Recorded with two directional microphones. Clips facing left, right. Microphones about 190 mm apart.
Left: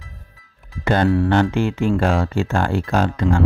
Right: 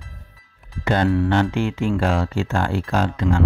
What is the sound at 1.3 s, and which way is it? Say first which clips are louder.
Speech: left 2 dB; 45° left (ahead or behind).